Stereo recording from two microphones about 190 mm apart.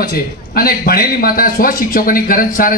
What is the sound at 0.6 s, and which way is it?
A man's voice, 50° left (ahead or behind).